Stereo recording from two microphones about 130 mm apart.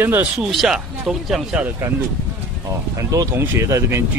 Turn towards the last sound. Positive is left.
turn(degrees=-25)  # may be behind; listen again after turning